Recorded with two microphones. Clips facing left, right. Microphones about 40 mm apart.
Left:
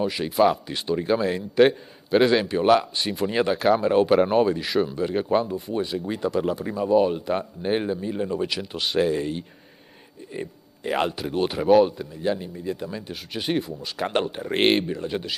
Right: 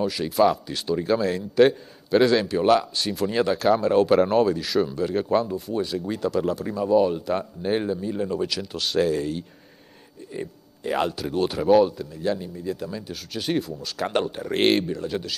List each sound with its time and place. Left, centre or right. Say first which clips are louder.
0.0 s a man's voice: even; centre